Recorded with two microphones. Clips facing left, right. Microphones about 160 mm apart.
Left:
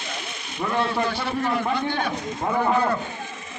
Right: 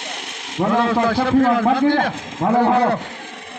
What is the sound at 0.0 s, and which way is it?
A man's voice, 75° right (ahead or behind).